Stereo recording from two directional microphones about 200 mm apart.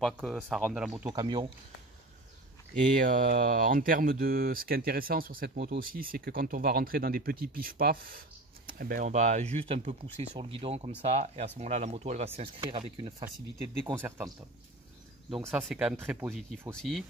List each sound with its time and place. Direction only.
0.0 s speech: centre (ahead or behind)
1.1 s speech: 20° right (ahead or behind)
2.8 s speech: 40° right (ahead or behind); by 13.1 s 25° right (ahead or behind)
13.7 s speech: 10° right (ahead or behind)
15.5 s speech: 5° right (ahead or behind)
16.3 s speech: 5° left (ahead or behind)